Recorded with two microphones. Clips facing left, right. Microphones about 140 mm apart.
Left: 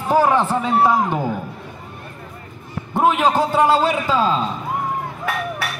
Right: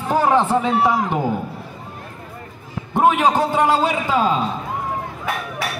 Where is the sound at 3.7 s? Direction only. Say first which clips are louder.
Left 1 dB; 15° right (ahead or behind).